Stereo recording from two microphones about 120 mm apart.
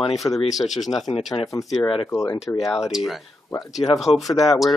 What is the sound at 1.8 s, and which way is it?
Speech, 50° left (ahead or behind).